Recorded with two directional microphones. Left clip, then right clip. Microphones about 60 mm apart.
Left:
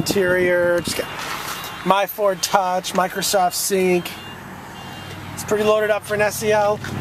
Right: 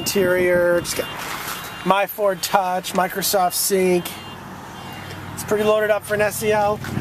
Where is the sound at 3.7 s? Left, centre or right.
Centre.